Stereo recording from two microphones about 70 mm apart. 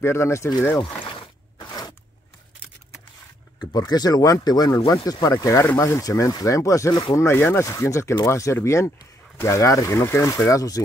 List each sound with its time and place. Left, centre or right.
0.0 s speech: left
1.6 s crunch: left
3.7 s speech: left
7.2 s speech: left